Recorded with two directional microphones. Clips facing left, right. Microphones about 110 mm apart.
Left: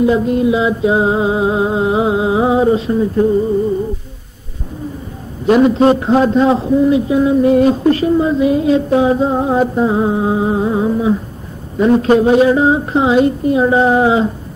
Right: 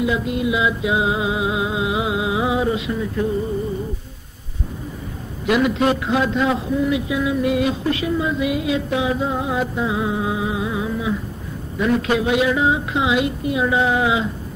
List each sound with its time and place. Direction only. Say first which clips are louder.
0.0 s a man's voice: left 8 dB; 40° left (ahead or behind)
5.4 s a man's voice: left 8 dB; 35° left (ahead or behind)